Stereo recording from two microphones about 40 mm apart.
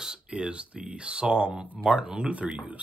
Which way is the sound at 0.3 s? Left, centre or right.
Right.